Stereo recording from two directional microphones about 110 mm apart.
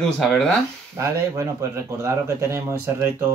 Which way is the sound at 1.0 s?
30° right (ahead or behind).